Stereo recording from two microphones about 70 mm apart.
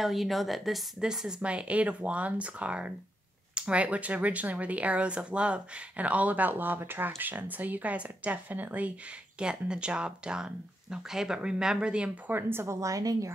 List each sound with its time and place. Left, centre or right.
0.0 s speech: centre; by 8.9 s right
9.4 s speech: centre
12.3 s speech: right
12.8 s a woman's voice: right